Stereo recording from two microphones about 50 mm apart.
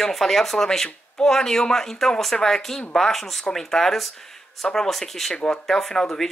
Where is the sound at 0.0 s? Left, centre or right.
Centre.